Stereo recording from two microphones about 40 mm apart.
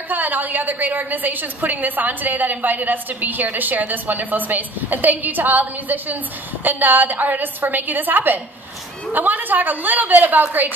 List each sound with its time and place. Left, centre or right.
0.1 s a woman's voice: right